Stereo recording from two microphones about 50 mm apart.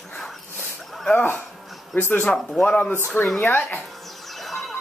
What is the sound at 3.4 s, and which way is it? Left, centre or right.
Speech, left.